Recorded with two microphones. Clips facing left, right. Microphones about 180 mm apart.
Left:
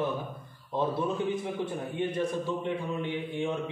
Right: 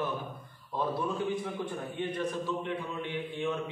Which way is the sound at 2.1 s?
10° left (ahead or behind).